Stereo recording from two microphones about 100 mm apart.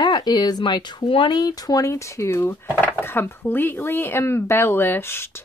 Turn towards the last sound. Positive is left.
turn(degrees=25)  # may be behind; listen again after turning